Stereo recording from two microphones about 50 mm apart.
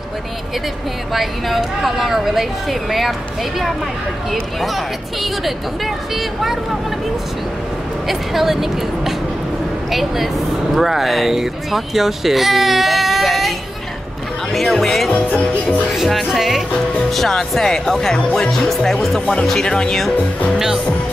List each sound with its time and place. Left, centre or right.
1.1 s speech: centre
6.4 s speech: centre
8.1 s speech: centre
15.0 s music: left
15.9 s speech: centre
20.5 s speech: centre